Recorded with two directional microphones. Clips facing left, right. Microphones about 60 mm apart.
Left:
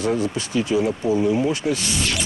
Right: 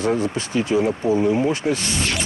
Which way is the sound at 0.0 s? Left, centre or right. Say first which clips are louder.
Right 1 dB; right.